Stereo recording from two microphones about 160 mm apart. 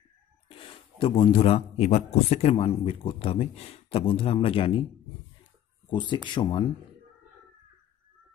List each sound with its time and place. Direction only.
0.5 s speech: 35° left (ahead or behind)
5.9 s speech: 30° left (ahead or behind)